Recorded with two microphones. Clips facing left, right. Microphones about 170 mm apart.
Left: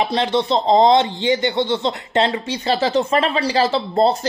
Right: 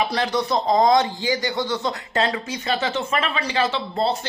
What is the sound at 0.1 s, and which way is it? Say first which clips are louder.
Speech: left 4 dB; 25° left (ahead or behind).